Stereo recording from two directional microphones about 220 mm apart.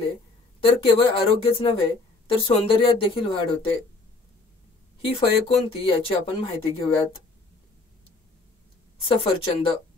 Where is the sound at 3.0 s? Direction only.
25° left (ahead or behind).